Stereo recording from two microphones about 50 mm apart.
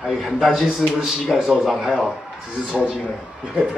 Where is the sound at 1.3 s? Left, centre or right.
Centre.